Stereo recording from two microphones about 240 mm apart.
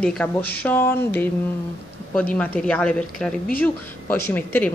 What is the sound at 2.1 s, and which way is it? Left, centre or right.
Speech, centre.